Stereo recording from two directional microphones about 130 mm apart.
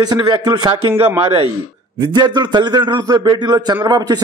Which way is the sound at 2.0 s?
35° right (ahead or behind).